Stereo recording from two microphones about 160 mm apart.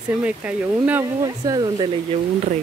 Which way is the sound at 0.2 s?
10° right (ahead or behind).